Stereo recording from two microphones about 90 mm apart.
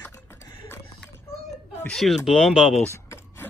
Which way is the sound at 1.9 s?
Centre (ahead or behind).